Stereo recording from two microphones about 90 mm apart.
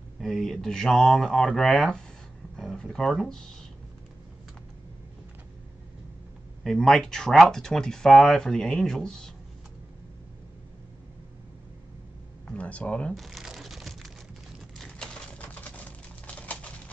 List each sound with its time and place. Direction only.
0.2 s speech: 5° left (ahead or behind)
6.6 s speech: 5° left (ahead or behind)
12.4 s speech: 15° left (ahead or behind)
13.1 s crumpling: centre (ahead or behind)
14.8 s typewriter: 10° left (ahead or behind)